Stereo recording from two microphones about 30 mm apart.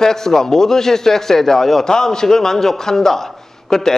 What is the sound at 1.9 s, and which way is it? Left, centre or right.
A man's voice, left.